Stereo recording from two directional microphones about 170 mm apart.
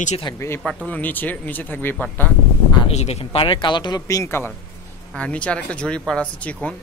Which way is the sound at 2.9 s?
40° left (ahead or behind).